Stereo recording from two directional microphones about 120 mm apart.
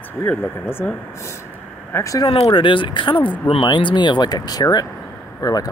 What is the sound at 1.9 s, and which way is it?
Speech, 25° left (ahead or behind).